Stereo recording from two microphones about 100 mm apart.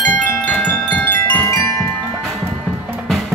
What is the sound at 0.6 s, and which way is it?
Wind chime, 20° left (ahead or behind).